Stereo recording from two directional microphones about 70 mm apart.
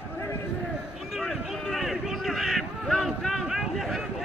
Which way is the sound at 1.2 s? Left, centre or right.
Centre.